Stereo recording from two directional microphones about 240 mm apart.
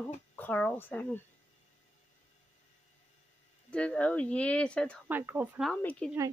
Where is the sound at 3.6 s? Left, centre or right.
Centre.